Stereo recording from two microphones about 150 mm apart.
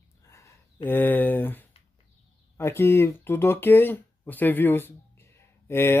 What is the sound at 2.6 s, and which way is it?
Speech, 15° left (ahead or behind).